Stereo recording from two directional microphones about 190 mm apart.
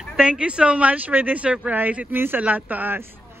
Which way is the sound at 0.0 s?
5° right (ahead or behind).